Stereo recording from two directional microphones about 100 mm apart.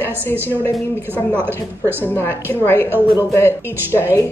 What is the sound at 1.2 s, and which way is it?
A woman's voice, 15° left (ahead or behind).